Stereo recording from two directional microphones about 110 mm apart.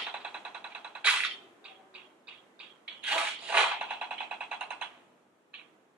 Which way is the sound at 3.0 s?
10° right (ahead or behind).